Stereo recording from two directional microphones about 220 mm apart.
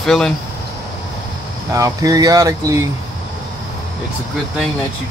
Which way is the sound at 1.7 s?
15° right (ahead or behind).